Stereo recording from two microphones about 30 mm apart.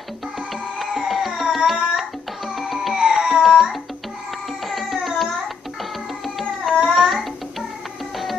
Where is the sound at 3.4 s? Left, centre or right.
Centre.